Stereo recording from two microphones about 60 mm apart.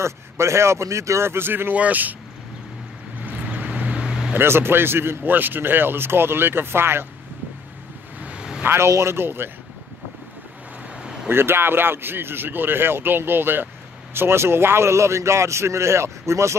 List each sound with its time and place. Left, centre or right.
0.0 s a man's voice: right
3.2 s vehicle: right
4.3 s speech: right
8.2 s vehicle: centre
8.6 s a man's voice: right
11.2 s a man's voice: right